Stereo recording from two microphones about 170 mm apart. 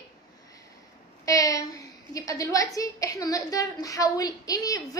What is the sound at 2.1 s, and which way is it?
A woman's voice, 20° left (ahead or behind).